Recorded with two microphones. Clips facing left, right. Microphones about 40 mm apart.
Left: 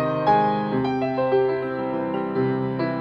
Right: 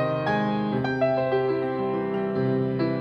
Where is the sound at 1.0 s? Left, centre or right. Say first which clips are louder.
Left 1 dB; centre.